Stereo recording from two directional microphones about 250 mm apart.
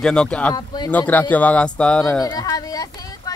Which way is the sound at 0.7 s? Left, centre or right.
Centre.